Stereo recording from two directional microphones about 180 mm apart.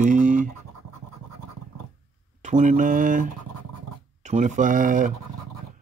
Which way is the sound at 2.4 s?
40° right (ahead or behind).